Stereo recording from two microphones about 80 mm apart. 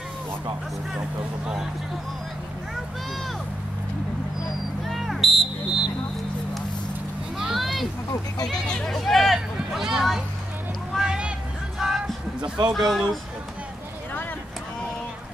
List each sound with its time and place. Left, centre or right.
4.8 s a sound: centre
7.3 s a sound: centre
8.5 s speech: centre
11.0 s vehicle: centre
11.8 s music: centre
12.4 s speech: right
12.7 s speech: centre